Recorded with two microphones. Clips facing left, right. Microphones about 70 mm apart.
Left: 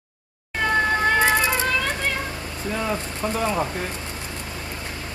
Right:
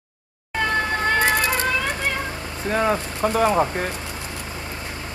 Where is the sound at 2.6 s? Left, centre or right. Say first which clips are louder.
Right 5 dB; right.